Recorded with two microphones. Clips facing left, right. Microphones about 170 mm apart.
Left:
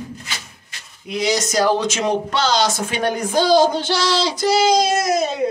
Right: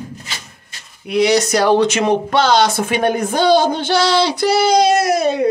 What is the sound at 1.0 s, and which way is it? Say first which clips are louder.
Speech: right 7 dB; 65° right (ahead or behind).